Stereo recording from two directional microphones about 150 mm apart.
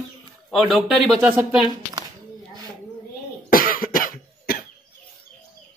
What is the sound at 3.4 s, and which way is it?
Cough, 70° left (ahead or behind).